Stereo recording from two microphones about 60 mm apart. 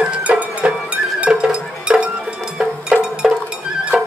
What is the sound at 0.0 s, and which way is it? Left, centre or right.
Music, centre.